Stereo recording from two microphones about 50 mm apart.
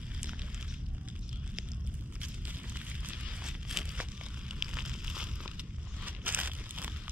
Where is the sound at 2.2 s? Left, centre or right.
Right.